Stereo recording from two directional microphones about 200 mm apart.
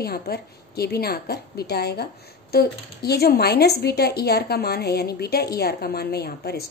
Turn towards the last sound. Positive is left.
turn(degrees=55)  # may be behind; listen again after turning